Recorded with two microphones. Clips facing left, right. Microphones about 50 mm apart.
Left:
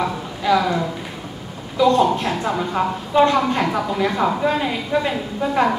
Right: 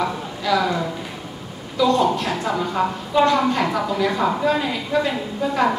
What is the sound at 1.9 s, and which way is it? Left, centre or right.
Speech, left.